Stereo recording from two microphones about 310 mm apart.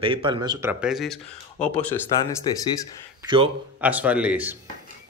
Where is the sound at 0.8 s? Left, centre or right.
Centre.